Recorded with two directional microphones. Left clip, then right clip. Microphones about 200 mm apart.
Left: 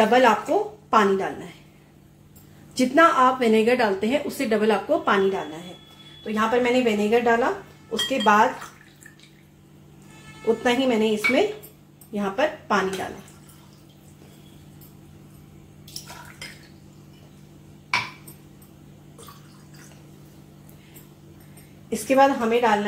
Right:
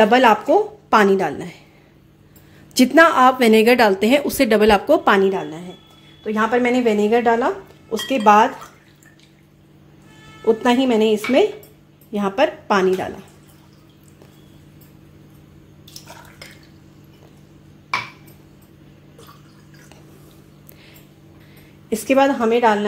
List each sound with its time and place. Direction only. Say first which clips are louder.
0.0 s a woman's voice: right 4 dB; 55° right (ahead or behind)
2.7 s a woman's voice: right 5 dB; 55° right (ahead or behind)
10.4 s a woman's voice: right 5 dB; 50° right (ahead or behind)
21.8 s a woman's voice: right 2 dB; 55° right (ahead or behind)